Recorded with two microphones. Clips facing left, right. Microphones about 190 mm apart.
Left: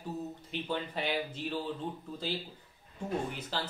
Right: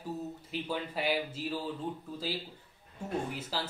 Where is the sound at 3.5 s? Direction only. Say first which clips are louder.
Even; 5° right (ahead or behind).